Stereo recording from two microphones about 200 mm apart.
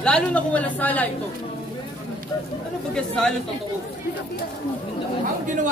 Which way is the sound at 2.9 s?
5° left (ahead or behind).